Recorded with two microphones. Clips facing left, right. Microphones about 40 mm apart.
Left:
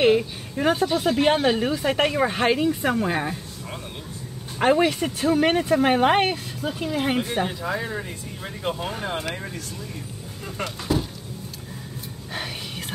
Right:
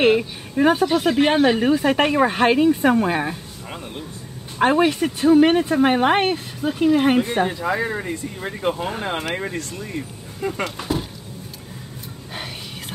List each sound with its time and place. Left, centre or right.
0.6 s speech: centre
0.8 s speech: right
1.1 s speech: right
1.6 s speech: centre
4.6 s speech: centre; by 7.5 s right
7.6 s speech: right
9.3 s speech: right
10.8 s speech: right